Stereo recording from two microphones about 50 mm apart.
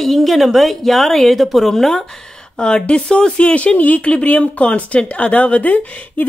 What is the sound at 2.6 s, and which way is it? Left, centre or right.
Speech, centre.